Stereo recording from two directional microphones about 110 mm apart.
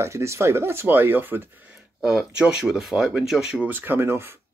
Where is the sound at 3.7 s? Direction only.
20° right (ahead or behind).